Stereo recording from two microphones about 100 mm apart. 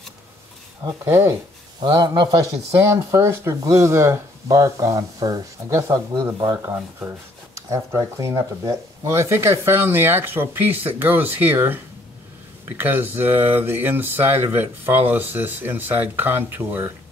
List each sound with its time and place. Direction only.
0.8 s speech: 25° right (ahead or behind)
1.8 s a man's voice: 45° right (ahead or behind)
2.9 s speech: 30° right (ahead or behind)
6.3 s a man's voice: 45° right (ahead or behind)
6.6 s speech: 25° right (ahead or behind)